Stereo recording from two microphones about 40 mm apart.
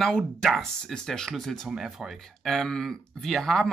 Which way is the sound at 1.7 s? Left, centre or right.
Centre.